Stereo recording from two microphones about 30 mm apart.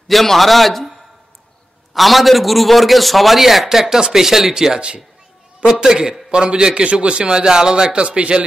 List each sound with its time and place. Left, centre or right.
0.1 s a man's voice: centre
2.0 s a man's voice: centre
4.7 s a man's voice: right
6.3 s a man's voice: right